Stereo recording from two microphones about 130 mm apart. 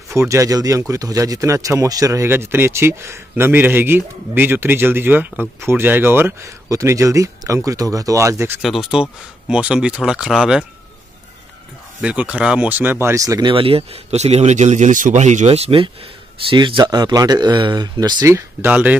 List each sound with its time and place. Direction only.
0.1 s speech: 25° right (ahead or behind)
8.6 s speech: centre (ahead or behind)
12.0 s speech: 10° right (ahead or behind); by 13.5 s 25° right (ahead or behind)
13.5 s speech: 45° right (ahead or behind)
16.8 s speech: 30° right (ahead or behind)
18.7 s speech: 10° right (ahead or behind)